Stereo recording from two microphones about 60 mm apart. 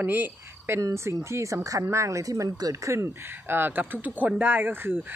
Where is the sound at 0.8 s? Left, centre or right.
Right.